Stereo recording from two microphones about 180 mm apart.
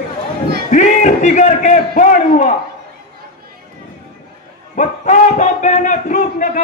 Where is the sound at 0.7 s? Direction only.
45° left (ahead or behind).